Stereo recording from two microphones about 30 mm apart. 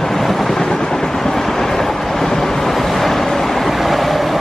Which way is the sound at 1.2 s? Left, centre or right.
Centre.